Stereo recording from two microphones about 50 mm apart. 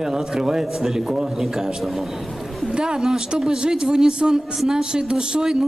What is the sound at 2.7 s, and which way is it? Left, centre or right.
A man's voice, centre.